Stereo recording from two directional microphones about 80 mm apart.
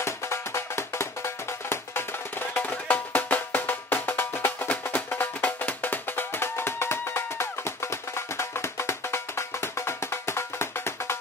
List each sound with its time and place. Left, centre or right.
0.0 s music: left